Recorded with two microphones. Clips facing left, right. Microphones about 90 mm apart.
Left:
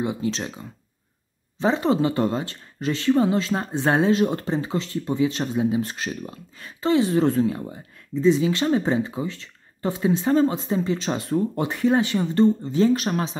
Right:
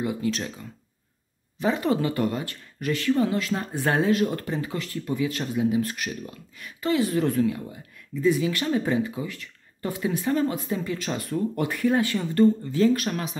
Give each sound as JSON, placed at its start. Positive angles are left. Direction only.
{"t": 0.0, "sound": "speech", "side_deg": 25}